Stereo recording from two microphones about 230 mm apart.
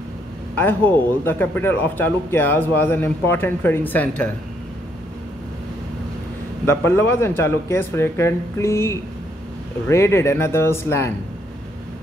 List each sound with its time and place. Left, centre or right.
0.6 s a man's voice: centre
6.6 s a man's voice: centre